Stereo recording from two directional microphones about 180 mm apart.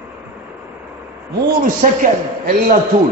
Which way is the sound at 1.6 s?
45° right (ahead or behind).